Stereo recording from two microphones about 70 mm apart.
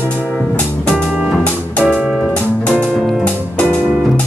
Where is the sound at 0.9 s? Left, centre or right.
Centre.